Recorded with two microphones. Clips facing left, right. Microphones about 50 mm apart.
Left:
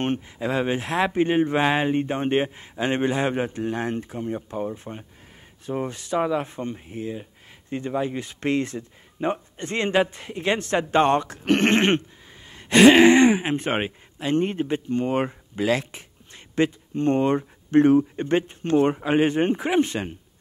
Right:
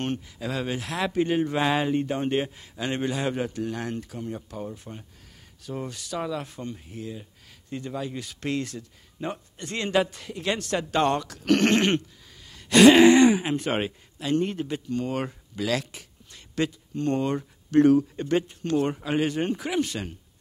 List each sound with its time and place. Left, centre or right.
0.0 s speech: left